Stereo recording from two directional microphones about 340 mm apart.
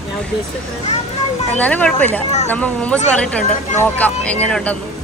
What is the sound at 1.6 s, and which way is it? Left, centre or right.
A woman's voice, centre.